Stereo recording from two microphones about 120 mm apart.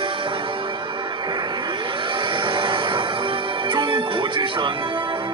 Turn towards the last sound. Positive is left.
turn(degrees=-45)  # may be behind; listen again after turning